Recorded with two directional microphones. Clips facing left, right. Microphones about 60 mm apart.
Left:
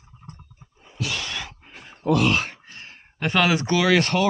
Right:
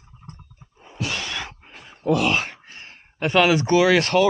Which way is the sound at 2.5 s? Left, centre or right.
Centre.